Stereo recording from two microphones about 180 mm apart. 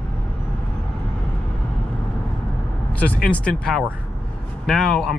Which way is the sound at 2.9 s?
10° left (ahead or behind).